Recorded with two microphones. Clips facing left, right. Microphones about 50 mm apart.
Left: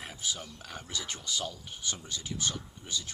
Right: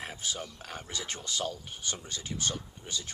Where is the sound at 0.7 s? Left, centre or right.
Right.